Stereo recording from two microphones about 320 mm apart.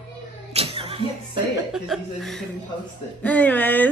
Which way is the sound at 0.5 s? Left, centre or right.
Centre.